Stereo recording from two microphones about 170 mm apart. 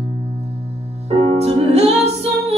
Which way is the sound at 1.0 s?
40° right (ahead or behind).